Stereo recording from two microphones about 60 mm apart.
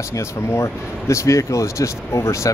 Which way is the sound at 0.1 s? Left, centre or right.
Left.